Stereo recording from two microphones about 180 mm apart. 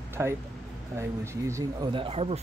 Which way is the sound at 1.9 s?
30° right (ahead or behind).